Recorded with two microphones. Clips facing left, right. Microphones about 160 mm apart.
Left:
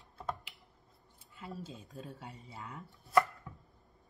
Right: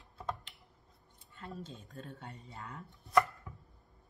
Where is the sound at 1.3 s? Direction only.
5° left (ahead or behind).